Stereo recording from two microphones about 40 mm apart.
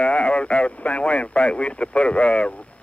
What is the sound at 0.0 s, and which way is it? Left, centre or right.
Speech, left.